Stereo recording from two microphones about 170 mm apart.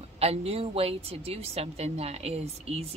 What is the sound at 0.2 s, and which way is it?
A woman's voice, 35° right (ahead or behind).